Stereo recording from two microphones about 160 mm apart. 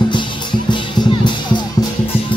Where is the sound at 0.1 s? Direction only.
30° left (ahead or behind).